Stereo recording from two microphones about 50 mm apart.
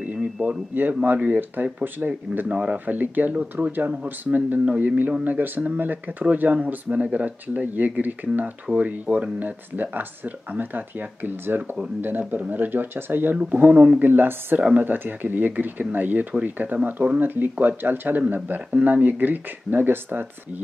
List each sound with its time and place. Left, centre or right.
0.2 s a sound: centre
0.7 s speech: right
14.6 s speech: right
14.9 s speech: right
17.2 s speech: right